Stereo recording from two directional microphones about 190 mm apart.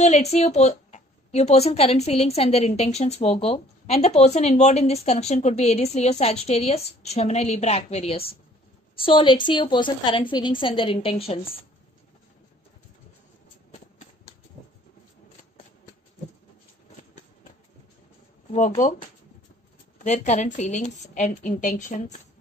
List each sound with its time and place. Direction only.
0.0 s a woman's voice: 35° left (ahead or behind)
18.5 s speech: 35° left (ahead or behind)
20.0 s speech: 40° left (ahead or behind)